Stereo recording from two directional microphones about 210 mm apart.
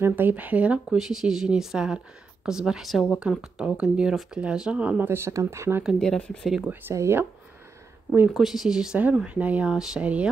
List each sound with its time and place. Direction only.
0.0 s speech: 10° right (ahead or behind)
5.9 s speech: 5° left (ahead or behind)
6.7 s speech: 10° right (ahead or behind)